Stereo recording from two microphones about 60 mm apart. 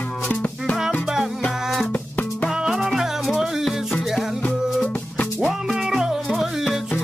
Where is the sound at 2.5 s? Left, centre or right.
Centre.